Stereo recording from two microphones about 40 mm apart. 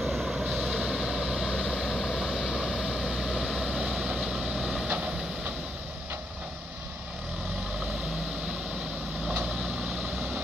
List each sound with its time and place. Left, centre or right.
0.0 s vehicle: centre
4.8 s vehicle: right